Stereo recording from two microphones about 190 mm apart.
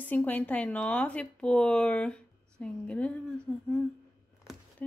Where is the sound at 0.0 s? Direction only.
10° left (ahead or behind).